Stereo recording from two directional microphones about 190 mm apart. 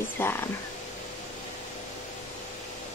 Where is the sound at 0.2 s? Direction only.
10° left (ahead or behind).